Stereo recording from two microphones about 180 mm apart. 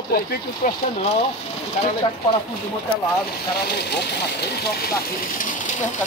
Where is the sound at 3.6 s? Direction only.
65° left (ahead or behind).